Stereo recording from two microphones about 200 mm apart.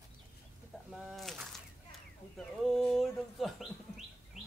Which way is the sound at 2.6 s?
Centre (ahead or behind).